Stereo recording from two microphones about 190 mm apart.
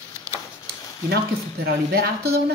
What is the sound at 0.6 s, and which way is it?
Speech, 60° right (ahead or behind).